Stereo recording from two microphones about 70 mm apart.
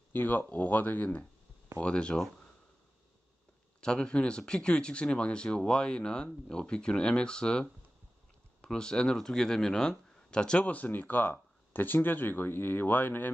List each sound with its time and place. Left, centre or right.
0.1 s speech: left; by 2.4 s centre
3.8 s speech: centre; by 13.3 s left